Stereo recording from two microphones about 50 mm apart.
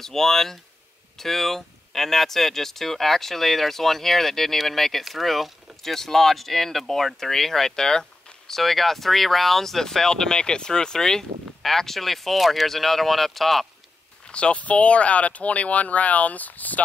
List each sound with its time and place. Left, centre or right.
0.0 s speech: centre
14.2 s speech: left